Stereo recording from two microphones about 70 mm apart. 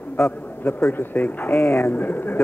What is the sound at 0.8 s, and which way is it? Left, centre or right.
Speech, left.